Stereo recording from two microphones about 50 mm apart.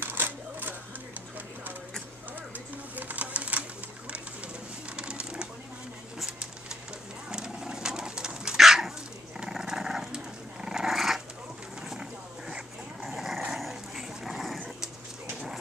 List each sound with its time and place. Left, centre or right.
0.0 s cash register: right
2.5 s a sound: right
4.9 s a sound: right
7.2 s pigeon: centre
8.5 s dog: centre
11.0 s dog: centre